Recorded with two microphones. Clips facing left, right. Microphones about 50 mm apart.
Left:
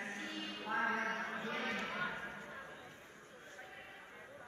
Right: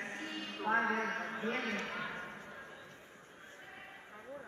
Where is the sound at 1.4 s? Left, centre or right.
Right.